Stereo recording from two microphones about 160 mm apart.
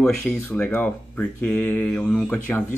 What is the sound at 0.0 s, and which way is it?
Speech, 5° left (ahead or behind).